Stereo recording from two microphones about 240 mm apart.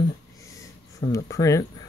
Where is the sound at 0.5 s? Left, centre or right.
Centre.